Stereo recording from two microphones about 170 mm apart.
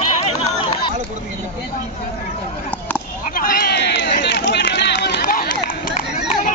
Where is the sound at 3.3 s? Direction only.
65° left (ahead or behind).